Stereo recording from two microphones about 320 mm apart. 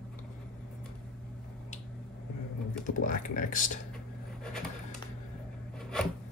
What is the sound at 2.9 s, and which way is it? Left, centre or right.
Speech, left.